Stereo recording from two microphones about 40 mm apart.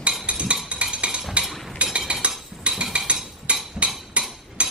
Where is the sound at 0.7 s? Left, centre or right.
Right.